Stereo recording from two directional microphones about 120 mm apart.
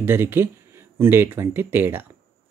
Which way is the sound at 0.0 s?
20° right (ahead or behind).